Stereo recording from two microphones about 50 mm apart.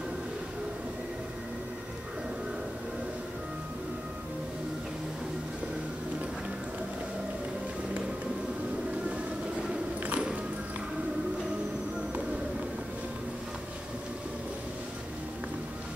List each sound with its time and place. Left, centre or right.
10.0 s music: right